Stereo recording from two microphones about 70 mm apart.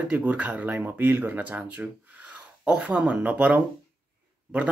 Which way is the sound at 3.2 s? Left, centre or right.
Right.